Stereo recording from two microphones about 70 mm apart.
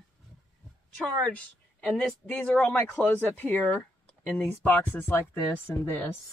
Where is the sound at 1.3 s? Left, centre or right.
Centre.